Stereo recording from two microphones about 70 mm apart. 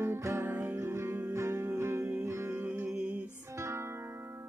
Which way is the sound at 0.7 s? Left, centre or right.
Right.